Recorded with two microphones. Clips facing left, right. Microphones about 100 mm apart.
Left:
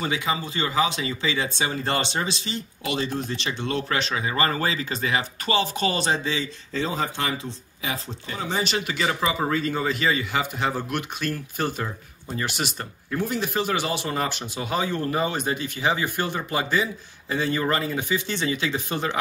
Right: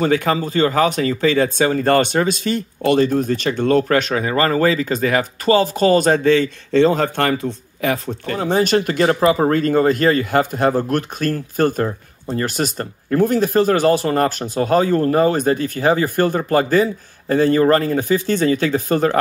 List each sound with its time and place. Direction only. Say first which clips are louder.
0.0 s speech: right 9 dB; 50° right (ahead or behind)